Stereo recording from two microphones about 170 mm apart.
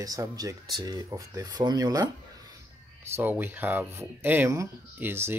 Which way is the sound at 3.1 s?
10° right (ahead or behind).